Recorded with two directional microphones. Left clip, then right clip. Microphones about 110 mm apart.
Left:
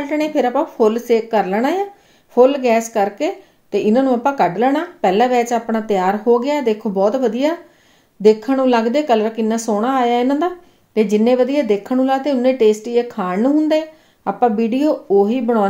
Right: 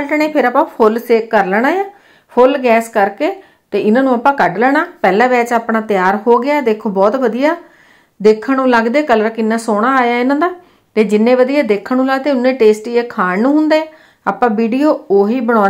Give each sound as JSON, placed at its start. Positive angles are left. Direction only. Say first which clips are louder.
{"t": 0.0, "sound": "a woman's voice", "louder": "right 4 dB", "side_deg": 15}